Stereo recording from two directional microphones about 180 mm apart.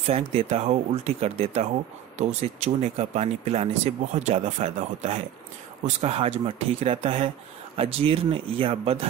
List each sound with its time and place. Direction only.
0.0 s speech: 35° right (ahead or behind)